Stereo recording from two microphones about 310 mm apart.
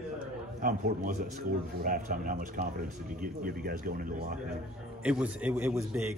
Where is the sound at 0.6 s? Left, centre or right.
Right.